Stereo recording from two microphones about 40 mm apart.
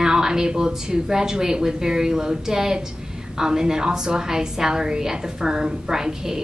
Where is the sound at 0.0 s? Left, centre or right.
Centre.